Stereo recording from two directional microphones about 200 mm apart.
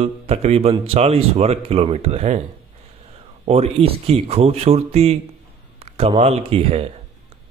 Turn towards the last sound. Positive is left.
turn(degrees=-30)  # may be behind; listen again after turning